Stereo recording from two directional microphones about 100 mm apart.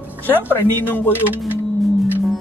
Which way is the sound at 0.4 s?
20° left (ahead or behind).